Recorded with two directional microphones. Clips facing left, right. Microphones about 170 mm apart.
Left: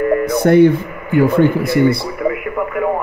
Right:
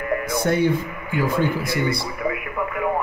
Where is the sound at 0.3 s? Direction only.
60° left (ahead or behind).